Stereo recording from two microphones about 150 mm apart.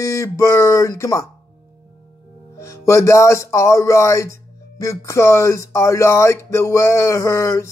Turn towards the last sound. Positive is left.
turn(degrees=20)  # may be behind; listen again after turning